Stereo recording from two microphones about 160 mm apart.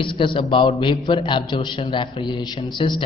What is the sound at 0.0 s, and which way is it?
A man's voice, 30° left (ahead or behind).